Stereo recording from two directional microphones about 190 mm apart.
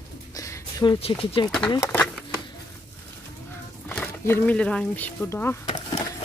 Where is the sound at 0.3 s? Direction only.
20° left (ahead or behind).